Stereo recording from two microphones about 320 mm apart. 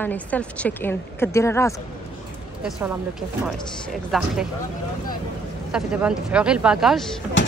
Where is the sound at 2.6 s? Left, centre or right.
Centre.